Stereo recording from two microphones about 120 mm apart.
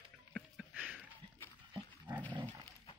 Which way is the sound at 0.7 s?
10° right (ahead or behind).